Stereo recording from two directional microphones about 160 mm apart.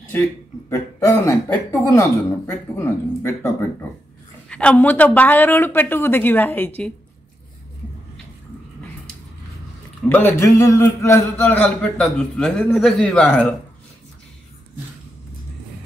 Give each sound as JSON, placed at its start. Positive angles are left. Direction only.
{"t": 0.7, "sound": "speech", "side_deg": 15}
{"t": 4.5, "sound": "speech", "side_deg": 5}
{"t": 10.0, "sound": "speech", "side_deg": 10}